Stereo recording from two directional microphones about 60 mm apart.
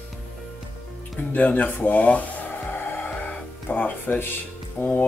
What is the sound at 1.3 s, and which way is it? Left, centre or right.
Speech, left.